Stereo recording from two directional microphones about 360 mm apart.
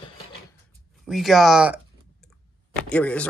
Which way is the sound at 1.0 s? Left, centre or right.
Centre.